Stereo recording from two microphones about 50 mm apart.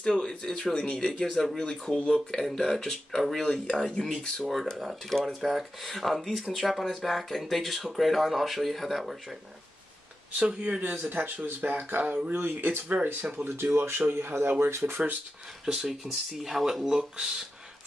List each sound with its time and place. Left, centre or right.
0.0 s speech: centre
1.3 s speech: centre
1.6 s speech: centre
5.1 s speech: centre
10.6 s speech: right
13.6 s speech: right
15.6 s speech: centre